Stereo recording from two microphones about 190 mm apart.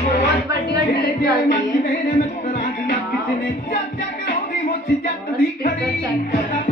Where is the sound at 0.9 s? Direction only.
55° left (ahead or behind).